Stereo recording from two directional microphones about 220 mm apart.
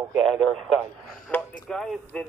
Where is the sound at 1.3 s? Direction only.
5° left (ahead or behind).